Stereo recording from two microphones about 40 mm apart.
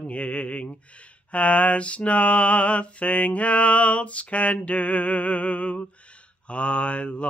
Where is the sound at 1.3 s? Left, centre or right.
Left.